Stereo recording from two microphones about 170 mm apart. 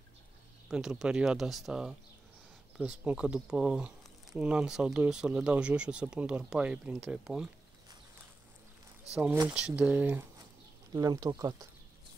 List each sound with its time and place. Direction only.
0.7 s speech: 5° right (ahead or behind)
9.5 s speech: 5° right (ahead or behind)
10.9 s speech: 20° right (ahead or behind)